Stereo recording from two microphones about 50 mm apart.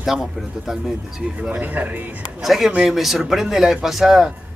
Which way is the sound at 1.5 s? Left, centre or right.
Right.